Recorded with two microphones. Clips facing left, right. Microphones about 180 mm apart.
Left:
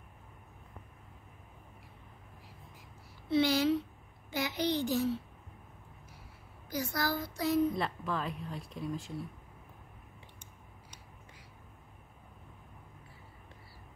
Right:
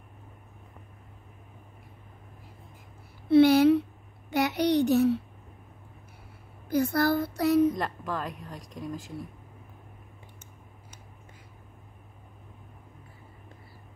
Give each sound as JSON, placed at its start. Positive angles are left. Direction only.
{"t": 3.3, "sound": "a sound", "side_deg": -60}
{"t": 6.7, "sound": "speech", "side_deg": -60}
{"t": 8.0, "sound": "a woman's voice", "side_deg": 0}
{"t": 8.3, "sound": "a woman's voice", "side_deg": -40}